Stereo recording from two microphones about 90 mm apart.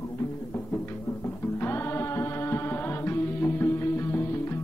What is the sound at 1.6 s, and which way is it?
Music, 25° left (ahead or behind).